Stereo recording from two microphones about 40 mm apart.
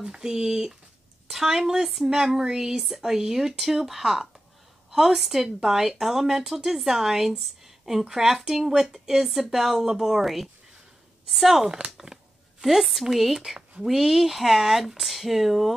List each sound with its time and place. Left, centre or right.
0.0 s speech: centre
11.6 s speech: centre
12.6 s speech: centre